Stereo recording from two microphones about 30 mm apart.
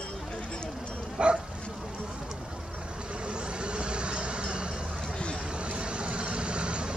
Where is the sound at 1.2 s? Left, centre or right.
Right.